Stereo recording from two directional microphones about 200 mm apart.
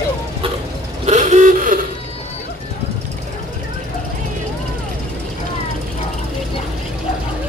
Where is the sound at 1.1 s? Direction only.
35° right (ahead or behind).